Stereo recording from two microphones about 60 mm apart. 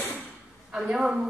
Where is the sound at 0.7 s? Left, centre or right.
Centre.